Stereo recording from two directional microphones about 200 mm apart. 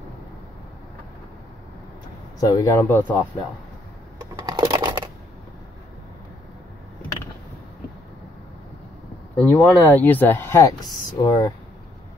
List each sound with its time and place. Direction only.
2.4 s speech: 15° left (ahead or behind)
4.5 s shuffling cards: 20° right (ahead or behind)
9.4 s speech: 10° left (ahead or behind)